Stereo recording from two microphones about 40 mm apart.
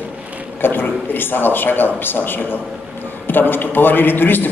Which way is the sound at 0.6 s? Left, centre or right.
Left.